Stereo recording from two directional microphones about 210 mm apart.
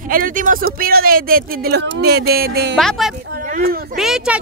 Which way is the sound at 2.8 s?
Centre (ahead or behind).